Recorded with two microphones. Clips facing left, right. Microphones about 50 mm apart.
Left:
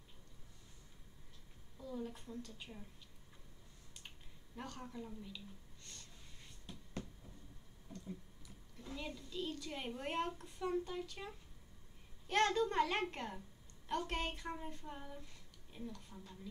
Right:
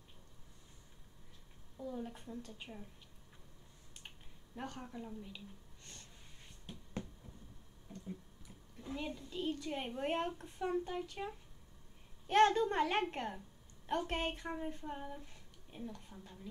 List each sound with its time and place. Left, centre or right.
1.9 s a woman's voice: right
4.6 s a woman's voice: right
6.6 s a sound: right
8.8 s a woman's voice: right